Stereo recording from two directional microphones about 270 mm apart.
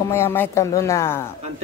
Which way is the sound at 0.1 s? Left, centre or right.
Centre.